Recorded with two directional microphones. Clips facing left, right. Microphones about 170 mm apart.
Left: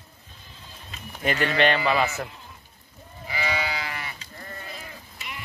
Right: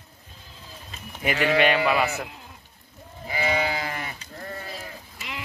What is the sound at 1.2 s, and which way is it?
Speech, 5° right (ahead or behind).